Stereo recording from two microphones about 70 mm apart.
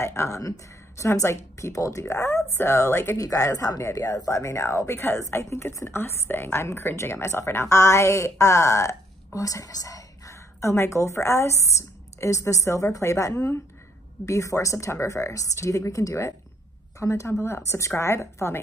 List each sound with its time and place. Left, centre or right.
0.0 s a woman's voice: left
2.0 s a woman's voice: left
3.2 s a woman's voice: left